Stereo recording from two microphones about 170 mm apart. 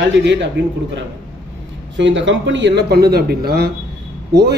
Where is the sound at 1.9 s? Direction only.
90° right; by 3.7 s 65° right (ahead or behind).